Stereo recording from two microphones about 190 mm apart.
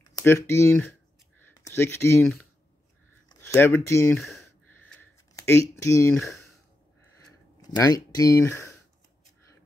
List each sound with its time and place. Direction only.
0.2 s speech: 15° left (ahead or behind)
4.2 s a sound: centre (ahead or behind)
5.3 s speech: 15° left (ahead or behind)
7.7 s speech: 20° left (ahead or behind)